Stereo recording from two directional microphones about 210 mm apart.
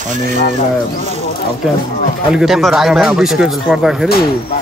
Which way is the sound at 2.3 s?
Centre (ahead or behind).